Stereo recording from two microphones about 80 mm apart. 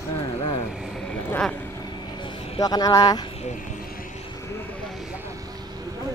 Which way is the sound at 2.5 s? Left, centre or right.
Left.